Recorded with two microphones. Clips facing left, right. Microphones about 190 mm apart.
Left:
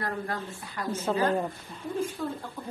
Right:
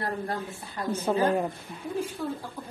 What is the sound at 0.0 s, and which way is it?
A woman's voice, 25° right (ahead or behind).